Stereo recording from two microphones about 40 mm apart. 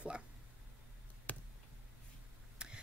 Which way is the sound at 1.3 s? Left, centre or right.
Left.